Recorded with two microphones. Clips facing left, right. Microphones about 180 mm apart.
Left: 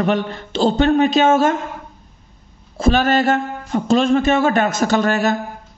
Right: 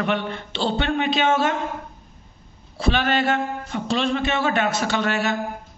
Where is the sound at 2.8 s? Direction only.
45° left (ahead or behind).